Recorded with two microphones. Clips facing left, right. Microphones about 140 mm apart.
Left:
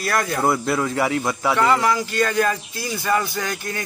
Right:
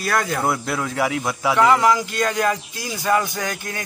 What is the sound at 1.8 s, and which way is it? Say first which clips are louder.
A man's voice: right 2 dB; 15° right (ahead or behind).